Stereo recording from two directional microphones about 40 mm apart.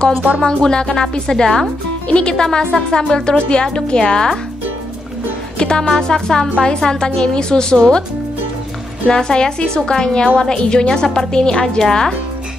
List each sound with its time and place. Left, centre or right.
0.4 s a woman's voice: centre
5.6 s a woman's voice: centre
9.0 s a woman's voice: centre